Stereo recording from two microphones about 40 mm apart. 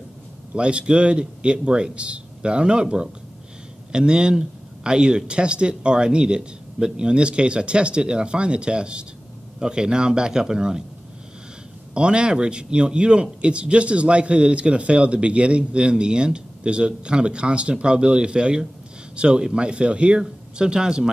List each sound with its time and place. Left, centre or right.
0.6 s a man's voice: right
11.9 s a man's voice: right